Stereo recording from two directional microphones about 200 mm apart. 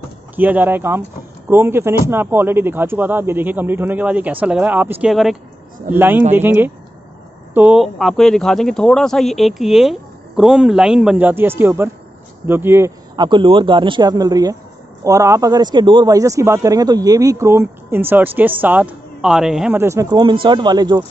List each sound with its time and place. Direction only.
0.4 s a man's voice: 10° right (ahead or behind)